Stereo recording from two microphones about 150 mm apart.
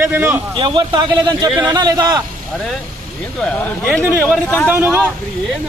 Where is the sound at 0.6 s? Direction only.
30° right (ahead or behind).